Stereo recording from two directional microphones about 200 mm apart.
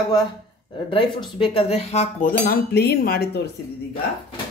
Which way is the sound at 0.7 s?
25° left (ahead or behind).